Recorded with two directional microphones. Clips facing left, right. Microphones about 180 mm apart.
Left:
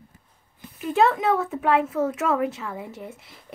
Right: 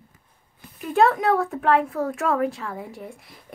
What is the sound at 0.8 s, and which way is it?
Speech, centre (ahead or behind).